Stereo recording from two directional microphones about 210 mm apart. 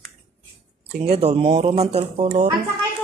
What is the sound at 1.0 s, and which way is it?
Speech, 30° right (ahead or behind).